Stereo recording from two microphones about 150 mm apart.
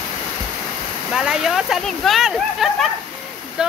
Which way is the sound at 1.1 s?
5° right (ahead or behind).